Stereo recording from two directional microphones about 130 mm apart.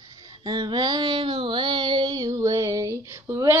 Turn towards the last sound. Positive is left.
turn(degrees=-20)  # may be behind; listen again after turning